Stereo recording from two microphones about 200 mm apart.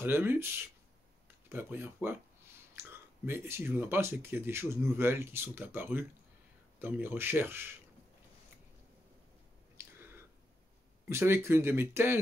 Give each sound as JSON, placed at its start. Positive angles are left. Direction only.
{"t": 0.0, "sound": "speech", "side_deg": -10}
{"t": 1.5, "sound": "speech", "side_deg": -10}
{"t": 11.1, "sound": "speech", "side_deg": -10}